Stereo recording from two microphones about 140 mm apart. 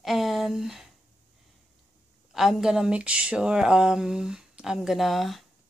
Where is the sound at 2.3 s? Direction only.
Centre (ahead or behind).